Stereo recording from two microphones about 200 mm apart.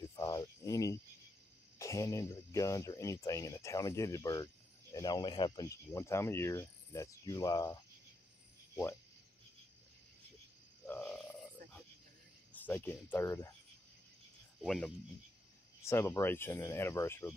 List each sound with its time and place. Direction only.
0.1 s cricket: 15° left (ahead or behind)
1.8 s speech: 15° left (ahead or behind)
10.9 s frog: 5° left (ahead or behind)
12.5 s speech: 10° left (ahead or behind)
14.6 s speech: centre (ahead or behind)
15.8 s speech: 15° left (ahead or behind)